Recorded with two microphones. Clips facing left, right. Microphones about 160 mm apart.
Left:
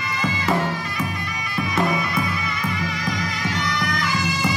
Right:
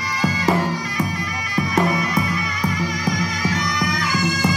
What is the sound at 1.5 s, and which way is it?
Bagpipes, 40° right (ahead or behind).